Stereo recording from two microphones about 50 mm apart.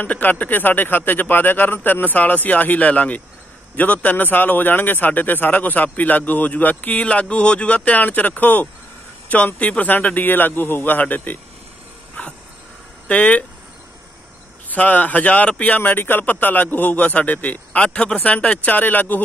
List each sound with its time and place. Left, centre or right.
0.0 s a man's voice: left
12.2 s dog: left
13.1 s speech: left
14.7 s a man's voice: left